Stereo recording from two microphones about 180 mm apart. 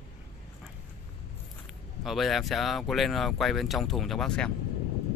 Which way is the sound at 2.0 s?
Centre (ahead or behind).